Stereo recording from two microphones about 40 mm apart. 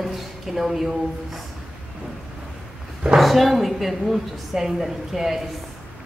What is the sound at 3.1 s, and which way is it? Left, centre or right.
A woman's voice, centre.